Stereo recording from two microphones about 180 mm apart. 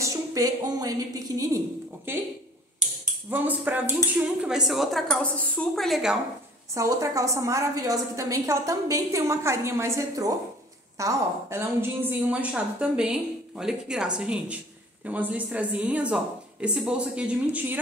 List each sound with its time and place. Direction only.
0.0 s speech: 20° right (ahead or behind)
3.3 s a woman's voice: 10° right (ahead or behind)
6.7 s a woman's voice: 15° right (ahead or behind)